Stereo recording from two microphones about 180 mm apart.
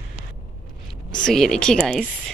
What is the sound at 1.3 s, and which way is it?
Speech, centre (ahead or behind).